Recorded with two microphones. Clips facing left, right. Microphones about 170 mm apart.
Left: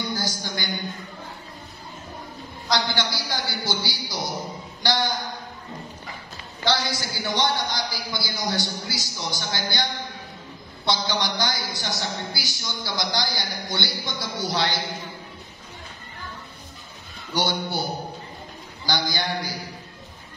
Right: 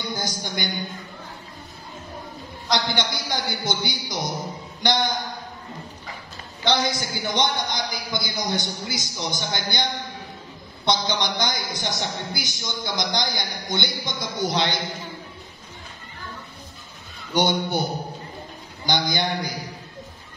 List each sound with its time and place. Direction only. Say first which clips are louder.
0.1 s a man's voice: even; 20° right (ahead or behind)
2.7 s a man's voice: right 1 dB; 20° right (ahead or behind)
6.6 s a man's voice: right 2 dB; 20° right (ahead or behind)
10.9 s a man's voice: right 2 dB; 20° right (ahead or behind)
17.3 s a man's voice: right 4 dB; 20° right (ahead or behind)
18.9 s a man's voice: right 3 dB; 20° right (ahead or behind)